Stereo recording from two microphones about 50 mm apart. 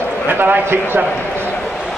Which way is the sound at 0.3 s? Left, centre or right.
Right.